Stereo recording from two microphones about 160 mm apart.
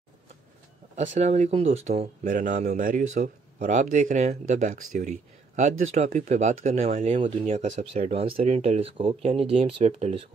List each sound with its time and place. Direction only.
0.9 s speech: 45° right (ahead or behind)